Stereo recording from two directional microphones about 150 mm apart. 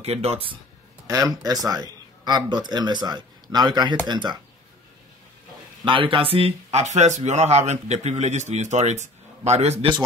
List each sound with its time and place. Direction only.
0.0 s speech: 45° right (ahead or behind)
1.0 s speech: 25° right (ahead or behind)
5.9 s speech: 35° right (ahead or behind)